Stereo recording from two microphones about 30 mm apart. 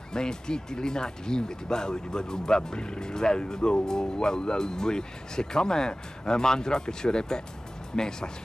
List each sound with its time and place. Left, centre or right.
0.1 s speech: left